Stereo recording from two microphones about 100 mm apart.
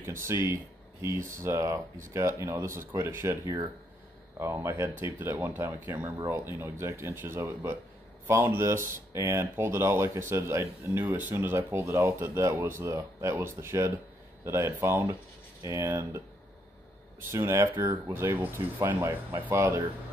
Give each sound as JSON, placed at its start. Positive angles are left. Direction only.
{"t": 0.0, "sound": "speech", "side_deg": -25}
{"t": 17.3, "sound": "speech", "side_deg": -30}